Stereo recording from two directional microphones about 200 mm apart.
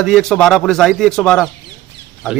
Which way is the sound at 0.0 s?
Centre (ahead or behind).